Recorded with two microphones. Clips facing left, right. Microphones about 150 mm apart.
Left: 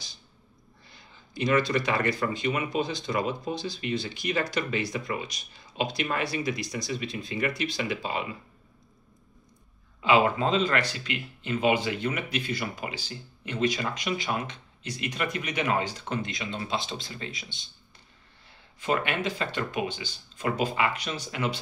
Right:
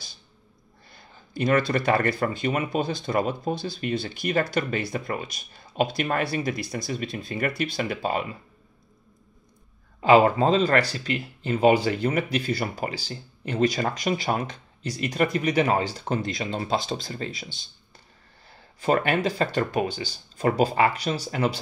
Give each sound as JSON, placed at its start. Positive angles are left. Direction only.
{"t": 0.8, "sound": "speech", "side_deg": -55}
{"t": 9.9, "sound": "speech", "side_deg": -40}
{"t": 18.8, "sound": "speech", "side_deg": -35}